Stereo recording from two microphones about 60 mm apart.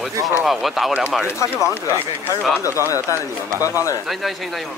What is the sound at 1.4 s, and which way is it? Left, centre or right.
Speech, left.